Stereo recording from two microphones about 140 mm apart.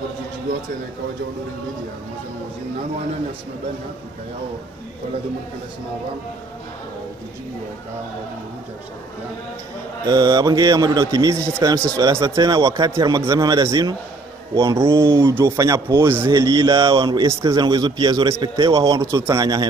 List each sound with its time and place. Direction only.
10.0 s a man's voice: 25° right (ahead or behind)